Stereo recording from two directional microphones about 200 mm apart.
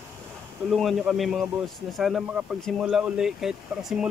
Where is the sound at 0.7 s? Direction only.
Centre (ahead or behind).